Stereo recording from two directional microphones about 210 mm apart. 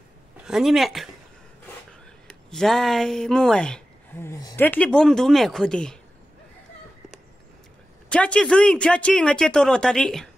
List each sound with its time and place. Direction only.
0.5 s speech: centre (ahead or behind)
2.2 s speech: centre (ahead or behind)
8.1 s speech: 5° left (ahead or behind)